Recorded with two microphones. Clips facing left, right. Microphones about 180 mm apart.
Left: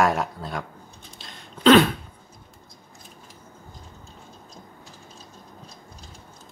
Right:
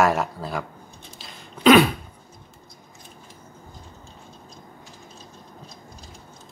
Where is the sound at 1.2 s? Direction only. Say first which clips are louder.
Even; centre (ahead or behind).